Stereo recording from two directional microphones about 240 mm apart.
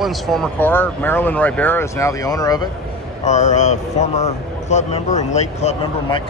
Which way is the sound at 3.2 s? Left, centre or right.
Left.